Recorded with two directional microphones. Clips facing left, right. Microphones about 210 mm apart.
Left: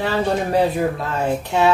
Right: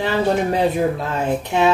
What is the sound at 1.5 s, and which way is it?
Speech, 20° right (ahead or behind).